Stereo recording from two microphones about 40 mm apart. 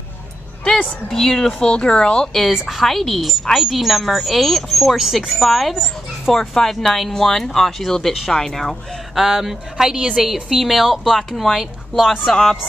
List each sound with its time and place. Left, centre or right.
1.1 s speech: centre
1.7 s speech: left
2.3 s speech: centre
4.9 s speech: centre